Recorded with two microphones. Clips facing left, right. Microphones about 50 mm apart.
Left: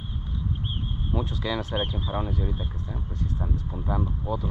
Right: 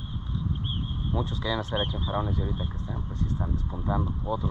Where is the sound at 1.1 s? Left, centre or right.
Left.